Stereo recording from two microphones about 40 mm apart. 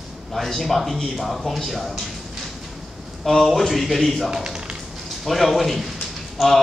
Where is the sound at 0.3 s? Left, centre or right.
Centre.